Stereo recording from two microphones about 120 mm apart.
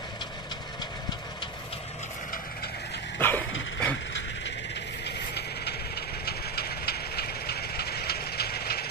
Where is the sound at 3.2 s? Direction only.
15° left (ahead or behind).